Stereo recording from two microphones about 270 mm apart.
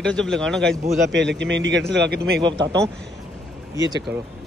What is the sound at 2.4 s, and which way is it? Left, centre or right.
Speech, centre.